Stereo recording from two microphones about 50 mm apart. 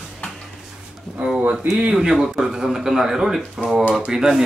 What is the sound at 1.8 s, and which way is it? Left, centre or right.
A man's voice, centre.